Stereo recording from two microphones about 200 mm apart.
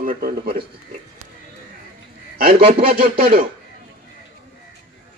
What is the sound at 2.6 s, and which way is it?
Music, 30° right (ahead or behind).